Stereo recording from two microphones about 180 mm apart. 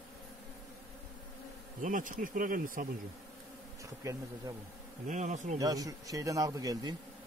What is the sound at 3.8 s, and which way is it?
Bee, 15° right (ahead or behind).